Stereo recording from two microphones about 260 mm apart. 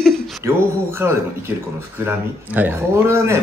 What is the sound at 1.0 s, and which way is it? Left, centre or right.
Speech, centre.